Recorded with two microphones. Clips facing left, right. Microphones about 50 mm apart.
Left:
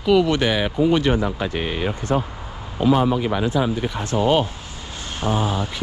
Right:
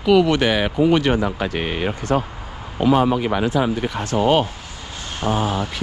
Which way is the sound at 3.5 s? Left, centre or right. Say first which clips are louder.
Right 1 dB; right.